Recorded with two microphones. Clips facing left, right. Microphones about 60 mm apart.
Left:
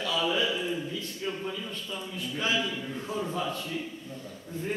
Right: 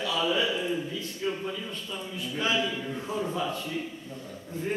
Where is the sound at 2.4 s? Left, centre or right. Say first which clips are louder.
Right 2 dB; centre.